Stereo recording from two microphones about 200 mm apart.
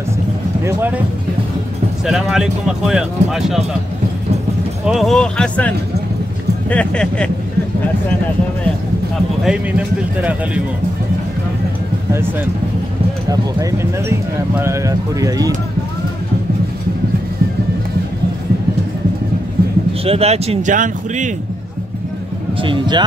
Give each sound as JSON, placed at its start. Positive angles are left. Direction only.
{"t": 0.7, "sound": "speech", "side_deg": -10}
{"t": 2.0, "sound": "speech", "side_deg": 0}
{"t": 4.8, "sound": "speech", "side_deg": 0}
{"t": 9.4, "sound": "speech", "side_deg": -5}
{"t": 13.3, "sound": "speech", "side_deg": -15}
{"t": 20.1, "sound": "speech", "side_deg": -30}
{"t": 22.6, "sound": "speech", "side_deg": -25}